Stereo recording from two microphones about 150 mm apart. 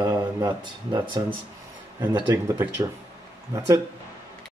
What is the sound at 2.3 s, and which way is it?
Speech, 20° right (ahead or behind).